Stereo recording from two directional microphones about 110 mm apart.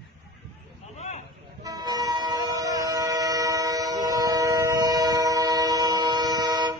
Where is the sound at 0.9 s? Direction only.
90° left.